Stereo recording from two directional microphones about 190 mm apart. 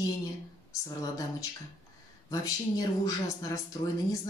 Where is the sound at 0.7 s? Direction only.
15° left (ahead or behind).